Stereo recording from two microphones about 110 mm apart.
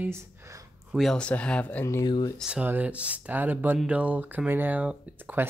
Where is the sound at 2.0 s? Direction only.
40° left (ahead or behind).